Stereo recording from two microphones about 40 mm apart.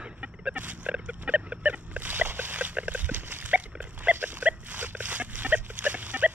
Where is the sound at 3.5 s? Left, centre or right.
Right.